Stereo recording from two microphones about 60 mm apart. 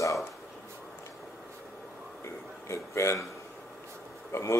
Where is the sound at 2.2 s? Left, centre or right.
Left.